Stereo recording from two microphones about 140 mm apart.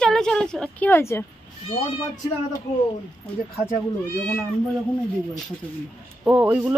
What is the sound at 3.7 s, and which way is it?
Speech, 15° left (ahead or behind).